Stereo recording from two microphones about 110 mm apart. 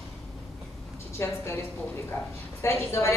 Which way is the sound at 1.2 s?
25° left (ahead or behind).